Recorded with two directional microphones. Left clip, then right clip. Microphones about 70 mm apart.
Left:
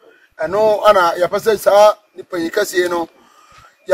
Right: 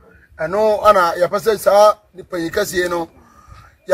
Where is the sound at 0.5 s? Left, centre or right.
Right.